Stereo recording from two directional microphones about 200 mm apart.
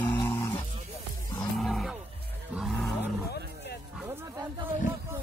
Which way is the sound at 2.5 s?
5° right (ahead or behind).